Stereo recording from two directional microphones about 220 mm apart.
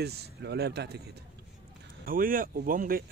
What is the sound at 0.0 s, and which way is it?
Speech, 50° right (ahead or behind).